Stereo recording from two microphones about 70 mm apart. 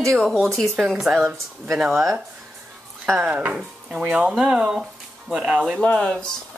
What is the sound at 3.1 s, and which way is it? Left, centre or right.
Speech, centre.